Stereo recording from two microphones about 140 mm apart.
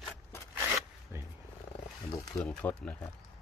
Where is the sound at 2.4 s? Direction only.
10° left (ahead or behind).